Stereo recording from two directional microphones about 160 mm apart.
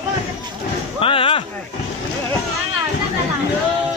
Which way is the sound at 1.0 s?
35° left (ahead or behind).